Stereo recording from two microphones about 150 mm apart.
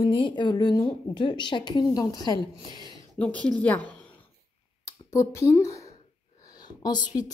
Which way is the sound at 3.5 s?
10° left (ahead or behind).